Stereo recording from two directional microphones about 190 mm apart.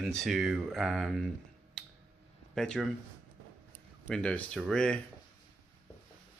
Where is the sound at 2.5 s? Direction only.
5° left (ahead or behind).